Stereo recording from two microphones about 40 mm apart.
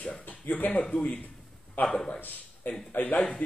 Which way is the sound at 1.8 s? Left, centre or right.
Left.